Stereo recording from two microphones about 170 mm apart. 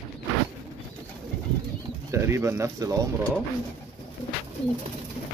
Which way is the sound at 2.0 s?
15° right (ahead or behind).